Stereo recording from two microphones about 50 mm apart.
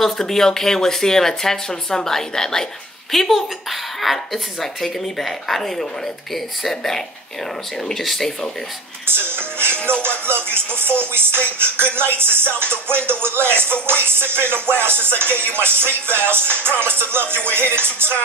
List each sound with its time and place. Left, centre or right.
0.0 s a woman's voice: centre
9.0 s speech: right
9.6 s music: right